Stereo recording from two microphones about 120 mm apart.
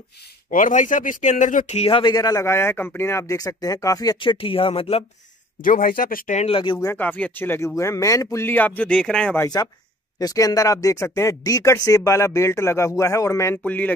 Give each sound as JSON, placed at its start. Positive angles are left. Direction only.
{"t": 0.5, "sound": "speech", "side_deg": 90}
{"t": 1.9, "sound": "speech", "side_deg": 50}
{"t": 2.1, "sound": "speech", "side_deg": 30}
{"t": 6.2, "sound": "speech", "side_deg": 70}
{"t": 6.5, "sound": "speech", "side_deg": 45}
{"t": 7.0, "sound": "speech", "side_deg": 10}
{"t": 10.1, "sound": "speech", "side_deg": 30}
{"t": 13.7, "sound": "speech", "side_deg": 15}